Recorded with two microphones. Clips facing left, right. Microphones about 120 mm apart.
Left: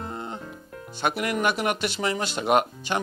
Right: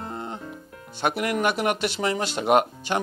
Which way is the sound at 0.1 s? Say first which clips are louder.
Right 1 dB; 25° right (ahead or behind).